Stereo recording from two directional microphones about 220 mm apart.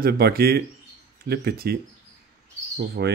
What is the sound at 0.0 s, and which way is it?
Speech, 45° right (ahead or behind).